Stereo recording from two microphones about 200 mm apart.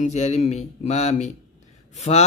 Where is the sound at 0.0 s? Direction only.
35° left (ahead or behind).